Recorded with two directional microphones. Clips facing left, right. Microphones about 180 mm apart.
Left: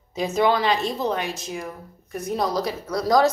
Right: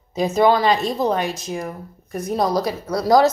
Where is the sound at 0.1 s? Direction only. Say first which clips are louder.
Right 4 dB; 40° right (ahead or behind).